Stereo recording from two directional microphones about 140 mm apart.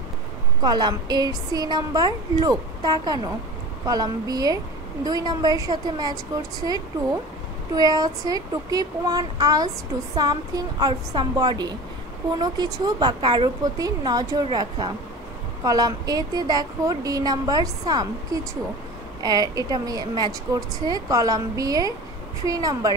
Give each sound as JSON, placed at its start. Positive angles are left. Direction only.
{"t": 0.6, "sound": "a woman's voice", "side_deg": -30}
{"t": 7.7, "sound": "a woman's voice", "side_deg": -25}